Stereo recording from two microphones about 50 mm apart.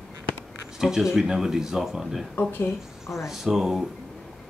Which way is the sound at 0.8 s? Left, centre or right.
Centre.